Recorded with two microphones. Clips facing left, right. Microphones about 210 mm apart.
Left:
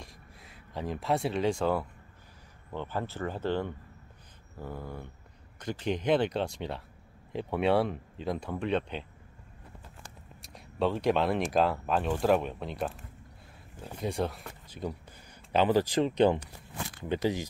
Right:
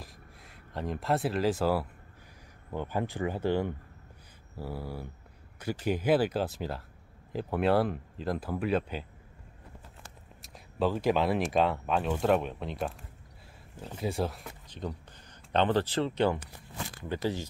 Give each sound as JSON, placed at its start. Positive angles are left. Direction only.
{"t": 0.0, "sound": "a sound", "side_deg": 0}
{"t": 2.7, "sound": "speech", "side_deg": -10}
{"t": 10.4, "sound": "speech", "side_deg": 0}